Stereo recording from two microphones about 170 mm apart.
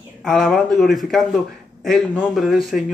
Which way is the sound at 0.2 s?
Centre (ahead or behind).